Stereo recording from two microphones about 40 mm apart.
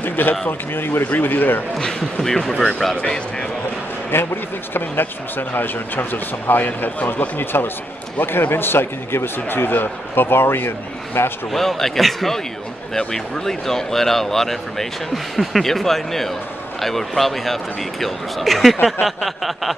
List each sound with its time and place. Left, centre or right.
0.0 s a sound: left
0.5 s a man's voice: left
1.0 s a man's voice: left
1.8 s speech: centre
4.1 s speech: left
5.5 s a man's voice: left
11.5 s speech: centre